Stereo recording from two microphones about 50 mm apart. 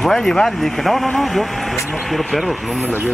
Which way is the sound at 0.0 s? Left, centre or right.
Centre.